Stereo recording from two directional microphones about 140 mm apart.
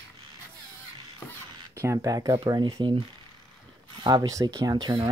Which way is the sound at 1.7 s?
20° right (ahead or behind).